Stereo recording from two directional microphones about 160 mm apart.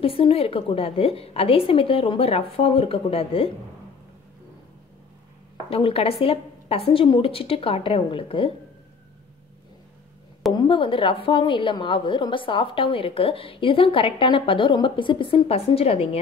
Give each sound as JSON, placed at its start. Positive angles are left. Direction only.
{"t": 0.0, "sound": "a woman's voice", "side_deg": 35}
{"t": 5.7, "sound": "a woman's voice", "side_deg": 35}
{"t": 10.5, "sound": "a woman's voice", "side_deg": 30}